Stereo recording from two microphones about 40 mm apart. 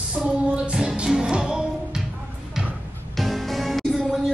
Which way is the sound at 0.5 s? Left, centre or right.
Right.